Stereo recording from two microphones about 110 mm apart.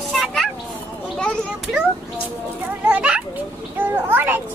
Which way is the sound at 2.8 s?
10° right (ahead or behind).